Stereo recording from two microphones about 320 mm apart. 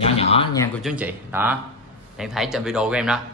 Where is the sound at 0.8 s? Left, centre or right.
Centre.